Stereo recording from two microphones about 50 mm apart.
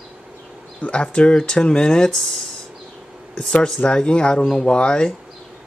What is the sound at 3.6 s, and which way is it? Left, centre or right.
Speech, centre.